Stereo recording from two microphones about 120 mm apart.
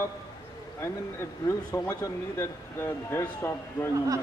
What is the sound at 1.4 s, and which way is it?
A man's voice, 25° left (ahead or behind).